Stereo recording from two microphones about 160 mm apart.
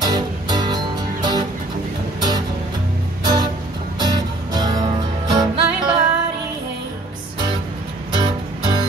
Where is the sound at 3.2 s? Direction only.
25° right (ahead or behind).